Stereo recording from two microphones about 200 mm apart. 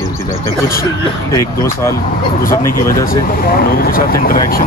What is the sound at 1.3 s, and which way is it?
Speech, 15° left (ahead or behind).